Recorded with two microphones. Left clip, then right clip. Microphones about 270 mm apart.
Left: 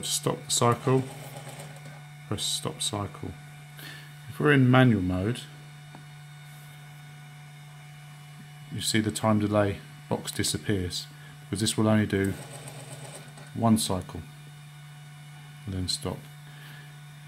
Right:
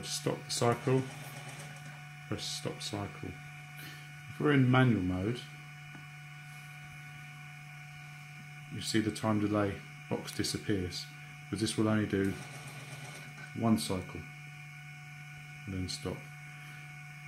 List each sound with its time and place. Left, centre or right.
0.0 s speech: left
2.2 s speech: left
4.4 s speech: left
8.7 s speech: left
13.6 s speech: left
15.8 s speech: left